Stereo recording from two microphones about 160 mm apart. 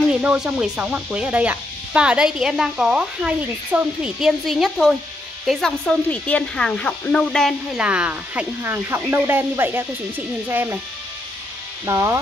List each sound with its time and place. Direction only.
0.1 s speech: 5° right (ahead or behind)
11.8 s speech: 20° right (ahead or behind)